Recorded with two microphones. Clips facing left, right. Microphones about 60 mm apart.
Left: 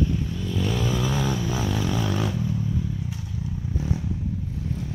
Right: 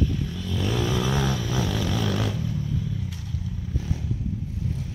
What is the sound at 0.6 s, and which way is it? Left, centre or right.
Vehicle, centre.